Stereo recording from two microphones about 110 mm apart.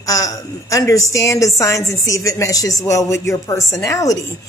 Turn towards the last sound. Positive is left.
turn(degrees=30)  # may be behind; listen again after turning